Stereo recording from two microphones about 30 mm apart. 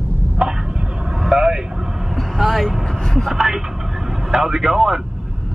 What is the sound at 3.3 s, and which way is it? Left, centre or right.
Speech, centre.